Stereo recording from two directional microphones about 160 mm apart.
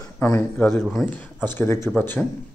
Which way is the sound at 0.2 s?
15° left (ahead or behind).